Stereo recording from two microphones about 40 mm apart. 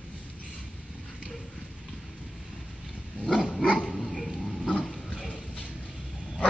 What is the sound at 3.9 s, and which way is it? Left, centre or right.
Dog, centre.